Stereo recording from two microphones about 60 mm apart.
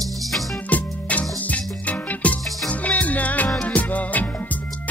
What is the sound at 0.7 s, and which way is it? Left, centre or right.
Music, left.